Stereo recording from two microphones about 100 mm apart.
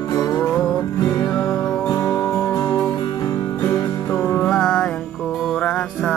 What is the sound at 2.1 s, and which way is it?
Music, 25° left (ahead or behind).